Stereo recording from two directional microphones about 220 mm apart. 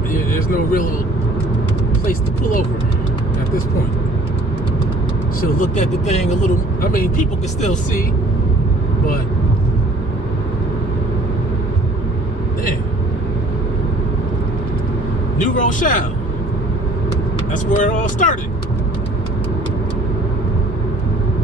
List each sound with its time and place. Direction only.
5.6 s speech: 30° left (ahead or behind)
15.4 s speech: 35° left (ahead or behind)
17.6 s speech: 35° left (ahead or behind)